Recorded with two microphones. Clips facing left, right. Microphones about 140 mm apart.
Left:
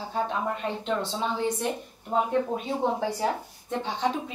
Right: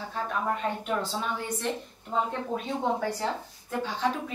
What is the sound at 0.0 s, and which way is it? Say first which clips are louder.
A woman's voice: left 2 dB; 25° left (ahead or behind).